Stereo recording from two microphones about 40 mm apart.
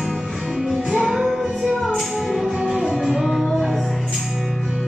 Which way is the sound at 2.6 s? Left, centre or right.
Centre.